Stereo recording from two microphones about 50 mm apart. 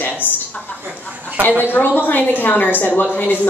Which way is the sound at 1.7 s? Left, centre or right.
Left.